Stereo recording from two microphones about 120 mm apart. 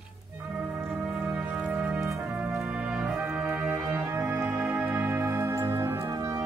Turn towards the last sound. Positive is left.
turn(degrees=-25)  # may be behind; listen again after turning